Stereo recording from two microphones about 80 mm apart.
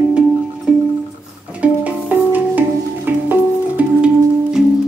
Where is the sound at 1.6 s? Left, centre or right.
Centre.